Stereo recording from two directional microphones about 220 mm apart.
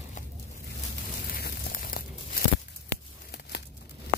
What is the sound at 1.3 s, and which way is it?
Tearing, 40° left (ahead or behind).